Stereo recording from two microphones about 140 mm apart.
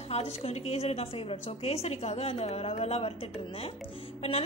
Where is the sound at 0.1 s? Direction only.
50° left (ahead or behind).